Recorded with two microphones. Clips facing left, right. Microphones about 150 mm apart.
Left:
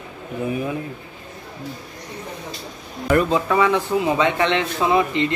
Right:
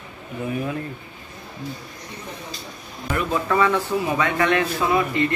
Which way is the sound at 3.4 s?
15° left (ahead or behind).